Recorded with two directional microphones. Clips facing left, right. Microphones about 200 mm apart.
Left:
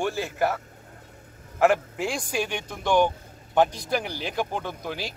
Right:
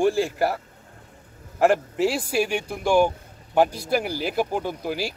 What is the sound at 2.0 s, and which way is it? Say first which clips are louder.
A man's voice: right 6 dB; 5° right (ahead or behind).